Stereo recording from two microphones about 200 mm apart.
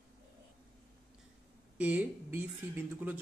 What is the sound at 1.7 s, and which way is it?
Speech, 5° right (ahead or behind).